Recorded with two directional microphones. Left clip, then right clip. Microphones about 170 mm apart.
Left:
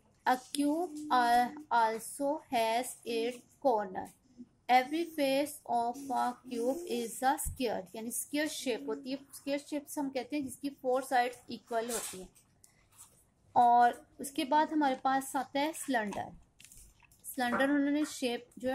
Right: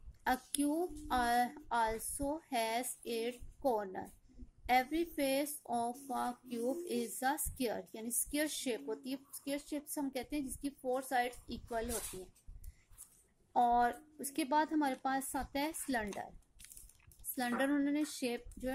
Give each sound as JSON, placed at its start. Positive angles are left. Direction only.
{"t": 0.2, "sound": "speech", "side_deg": -20}
{"t": 13.5, "sound": "a woman's voice", "side_deg": -15}
{"t": 17.4, "sound": "a woman's voice", "side_deg": -15}